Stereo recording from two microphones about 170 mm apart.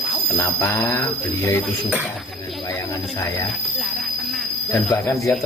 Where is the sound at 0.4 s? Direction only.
15° left (ahead or behind).